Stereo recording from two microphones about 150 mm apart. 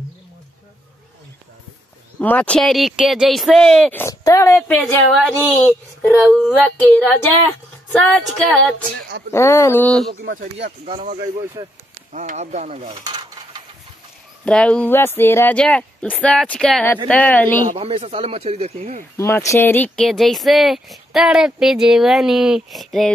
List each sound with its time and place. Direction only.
2.1 s speech: 10° left (ahead or behind)
3.9 s speech: 20° left (ahead or behind)
4.7 s speech: 5° left (ahead or behind)
9.3 s speech: 20° left (ahead or behind)
11.6 s speech: 25° right (ahead or behind)
12.1 s speech: 55° right (ahead or behind)
12.9 s a sound: 30° right (ahead or behind)
14.4 s speech: 5° left (ahead or behind)
17.7 s speech: 40° right (ahead or behind)
19.1 s speech: 20° left (ahead or behind); by 23.1 s centre (ahead or behind)